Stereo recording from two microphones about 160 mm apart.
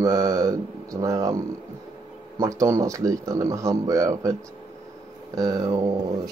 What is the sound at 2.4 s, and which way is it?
Speech, 20° right (ahead or behind).